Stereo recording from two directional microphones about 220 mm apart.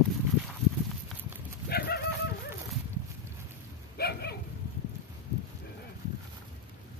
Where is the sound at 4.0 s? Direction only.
45° left (ahead or behind).